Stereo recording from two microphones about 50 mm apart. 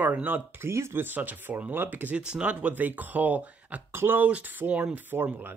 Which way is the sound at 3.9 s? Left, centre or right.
Right.